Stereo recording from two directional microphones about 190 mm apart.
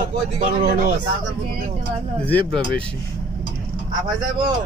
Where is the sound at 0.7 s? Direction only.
50° right (ahead or behind).